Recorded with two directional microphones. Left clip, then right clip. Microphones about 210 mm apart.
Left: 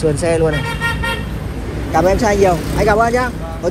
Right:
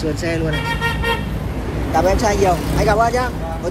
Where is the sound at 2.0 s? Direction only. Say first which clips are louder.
Left 3 dB; 30° right (ahead or behind).